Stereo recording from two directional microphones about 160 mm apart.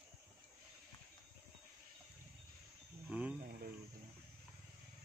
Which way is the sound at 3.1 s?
10° right (ahead or behind).